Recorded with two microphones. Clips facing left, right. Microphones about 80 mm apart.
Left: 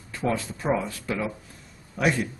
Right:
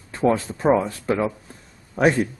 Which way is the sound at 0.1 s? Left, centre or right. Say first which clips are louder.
Right 7 dB; right.